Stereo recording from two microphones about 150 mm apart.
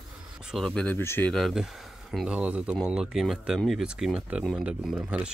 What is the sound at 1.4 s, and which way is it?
Speech, centre (ahead or behind).